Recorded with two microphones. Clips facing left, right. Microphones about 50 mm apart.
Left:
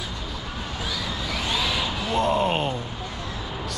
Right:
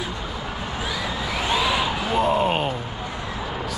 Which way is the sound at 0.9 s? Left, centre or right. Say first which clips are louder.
Right 3 dB; centre.